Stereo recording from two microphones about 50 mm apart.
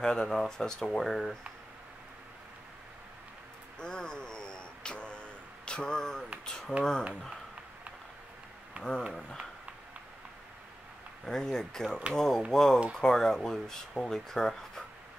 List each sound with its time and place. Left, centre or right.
0.0 s speech: centre
3.8 s a sound: centre
6.4 s finger snapping: centre
6.8 s speech: centre
8.8 s a sound: right
11.2 s speech: centre